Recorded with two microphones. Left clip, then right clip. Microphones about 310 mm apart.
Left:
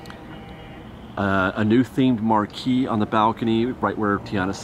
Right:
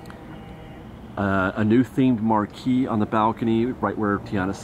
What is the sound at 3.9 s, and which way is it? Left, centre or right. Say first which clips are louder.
Speech: left 1 dB; centre.